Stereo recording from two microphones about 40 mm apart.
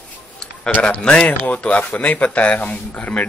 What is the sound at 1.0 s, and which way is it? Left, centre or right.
A man's voice, left.